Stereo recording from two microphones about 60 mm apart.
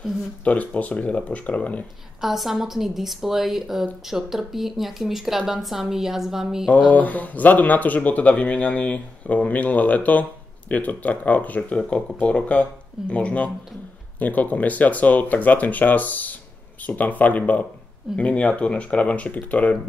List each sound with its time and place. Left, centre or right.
0.4 s speech: left
2.2 s a woman's voice: centre
6.9 s speech: left